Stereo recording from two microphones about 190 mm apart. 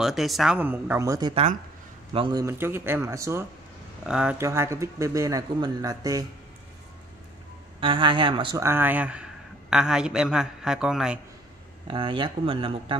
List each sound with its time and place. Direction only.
0.0 s speech: centre (ahead or behind); by 1.3 s 15° right (ahead or behind)
1.3 s speech: 35° right (ahead or behind)
2.1 s speech: 20° right (ahead or behind)
4.0 s speech: 5° right (ahead or behind)
7.8 s speech: 25° right (ahead or behind)
8.6 s a man's voice: 10° right (ahead or behind)
11.9 s speech: 25° right (ahead or behind)